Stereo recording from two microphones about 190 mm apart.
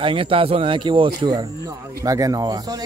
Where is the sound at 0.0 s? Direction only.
30° right (ahead or behind).